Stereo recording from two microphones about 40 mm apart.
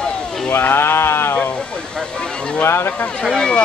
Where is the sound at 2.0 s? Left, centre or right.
Left.